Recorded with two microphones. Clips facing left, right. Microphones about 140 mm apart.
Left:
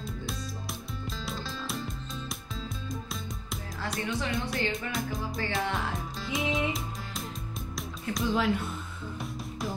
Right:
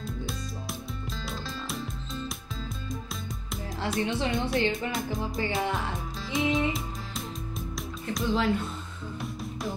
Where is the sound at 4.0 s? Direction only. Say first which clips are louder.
Right 4 dB; 25° right (ahead or behind).